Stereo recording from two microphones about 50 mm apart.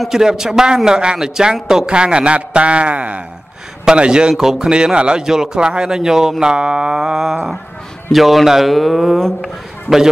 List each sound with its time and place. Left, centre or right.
0.1 s a man's voice: centre